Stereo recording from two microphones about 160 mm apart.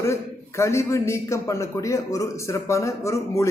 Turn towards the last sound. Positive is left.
turn(degrees=15)  # may be behind; listen again after turning